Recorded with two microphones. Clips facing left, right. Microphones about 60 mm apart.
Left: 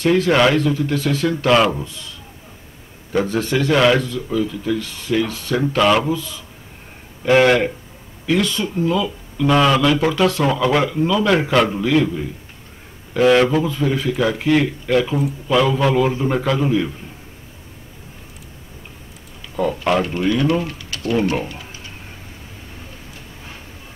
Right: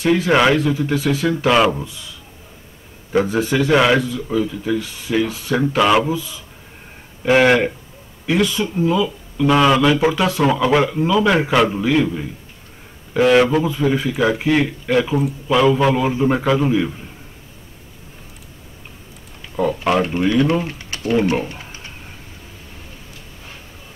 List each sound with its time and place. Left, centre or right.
0.0 s speech: centre
3.1 s speech: centre
4.3 s speech: right
4.7 s speech: centre
19.5 s speech: centre
20.6 s speech: right